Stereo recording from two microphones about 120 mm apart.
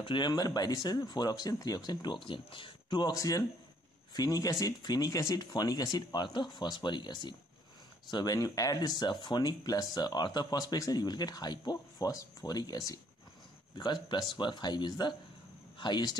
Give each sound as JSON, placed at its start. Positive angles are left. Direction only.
{"t": 0.0, "sound": "speech", "side_deg": 40}